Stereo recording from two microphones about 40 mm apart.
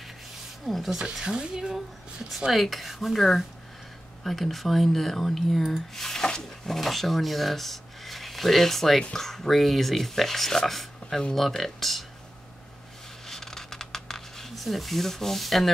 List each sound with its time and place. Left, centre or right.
0.8 s speech: centre
2.5 s speech: centre
6.7 s speech: centre
13.3 s a sound: centre